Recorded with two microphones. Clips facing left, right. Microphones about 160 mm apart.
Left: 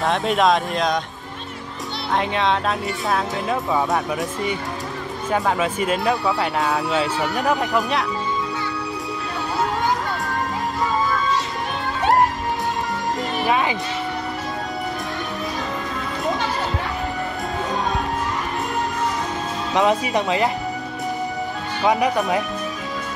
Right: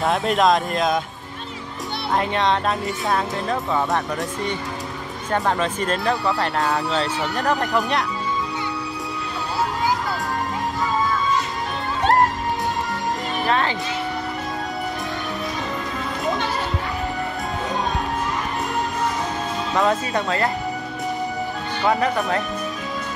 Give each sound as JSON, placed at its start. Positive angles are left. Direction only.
{"t": 0.0, "sound": "speech", "side_deg": 0}
{"t": 2.1, "sound": "speech", "side_deg": 0}
{"t": 5.3, "sound": "speech", "side_deg": 10}
{"t": 12.0, "sound": "music", "side_deg": 0}
{"t": 13.5, "sound": "speech", "side_deg": 10}
{"t": 19.7, "sound": "speech", "side_deg": 15}